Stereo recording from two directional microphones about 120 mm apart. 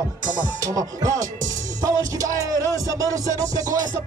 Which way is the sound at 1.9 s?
30° right (ahead or behind).